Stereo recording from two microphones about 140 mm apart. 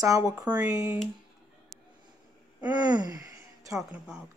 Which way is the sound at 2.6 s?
30° right (ahead or behind).